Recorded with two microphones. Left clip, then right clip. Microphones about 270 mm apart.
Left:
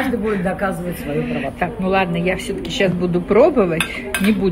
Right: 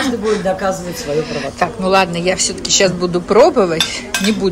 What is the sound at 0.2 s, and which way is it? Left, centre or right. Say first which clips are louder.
A woman's voice: right 4 dB; right.